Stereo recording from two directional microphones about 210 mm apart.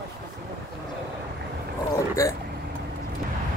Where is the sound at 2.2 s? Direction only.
15° left (ahead or behind).